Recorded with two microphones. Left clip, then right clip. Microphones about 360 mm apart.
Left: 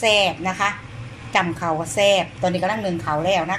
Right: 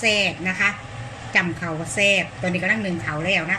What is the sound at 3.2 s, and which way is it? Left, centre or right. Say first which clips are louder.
Speech: left 2 dB; left.